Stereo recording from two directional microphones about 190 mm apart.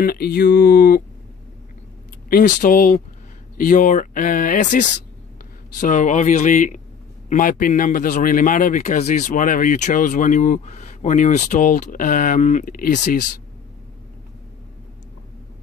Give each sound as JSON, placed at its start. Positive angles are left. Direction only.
{"t": 0.0, "sound": "a man's voice", "side_deg": 50}
{"t": 2.2, "sound": "a man's voice", "side_deg": 45}